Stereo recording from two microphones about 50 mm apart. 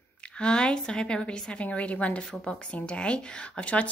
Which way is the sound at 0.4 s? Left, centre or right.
Centre.